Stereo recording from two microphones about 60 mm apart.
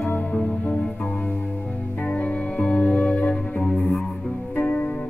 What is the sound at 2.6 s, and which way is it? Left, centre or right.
Music, left.